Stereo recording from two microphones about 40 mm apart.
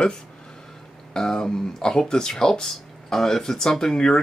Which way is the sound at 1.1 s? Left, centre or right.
Centre.